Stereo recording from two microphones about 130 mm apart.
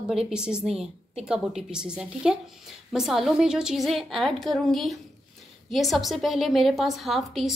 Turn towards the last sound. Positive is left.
turn(degrees=0)  # may be behind; listen again after turning